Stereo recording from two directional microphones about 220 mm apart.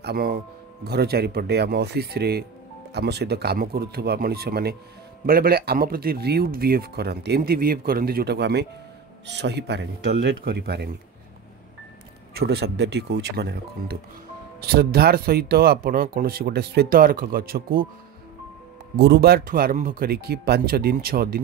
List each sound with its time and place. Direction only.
0.0 s speech: 45° right (ahead or behind)
12.4 s speech: 50° right (ahead or behind)
18.9 s speech: 50° right (ahead or behind)